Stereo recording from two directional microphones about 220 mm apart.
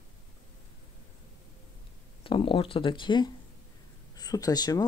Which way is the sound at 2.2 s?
25° left (ahead or behind).